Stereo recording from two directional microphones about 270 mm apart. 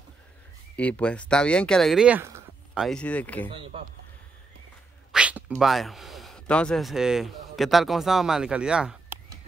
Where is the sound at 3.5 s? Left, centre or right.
Right.